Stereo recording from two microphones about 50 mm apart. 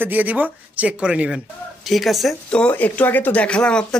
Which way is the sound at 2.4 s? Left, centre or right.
Left.